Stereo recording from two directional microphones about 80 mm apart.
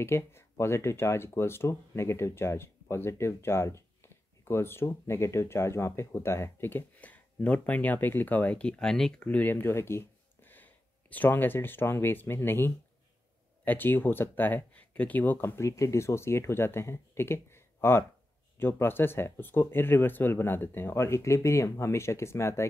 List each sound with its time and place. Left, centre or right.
0.0 s speech: left; by 9.2 s centre
9.2 s speech: centre; by 22.7 s left